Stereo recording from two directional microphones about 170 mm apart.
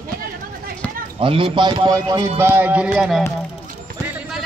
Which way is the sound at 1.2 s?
30° right (ahead or behind).